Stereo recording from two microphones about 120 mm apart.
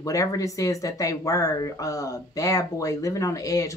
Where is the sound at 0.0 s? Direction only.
30° left (ahead or behind).